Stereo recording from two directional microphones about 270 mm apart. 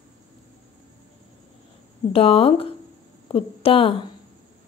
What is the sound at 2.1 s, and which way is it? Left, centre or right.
A woman's voice, left.